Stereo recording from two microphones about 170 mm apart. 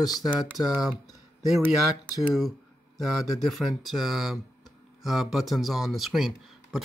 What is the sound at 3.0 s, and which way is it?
Speech, centre (ahead or behind).